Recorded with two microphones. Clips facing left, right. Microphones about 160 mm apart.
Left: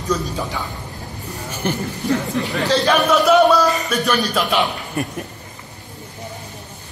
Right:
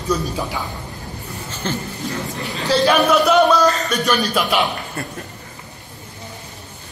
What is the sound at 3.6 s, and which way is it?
Speech, 15° left (ahead or behind).